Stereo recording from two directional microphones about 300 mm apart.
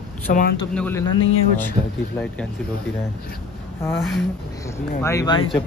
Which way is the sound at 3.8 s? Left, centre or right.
Centre.